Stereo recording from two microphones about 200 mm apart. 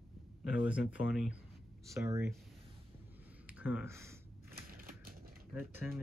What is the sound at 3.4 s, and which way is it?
Speech, 5° right (ahead or behind).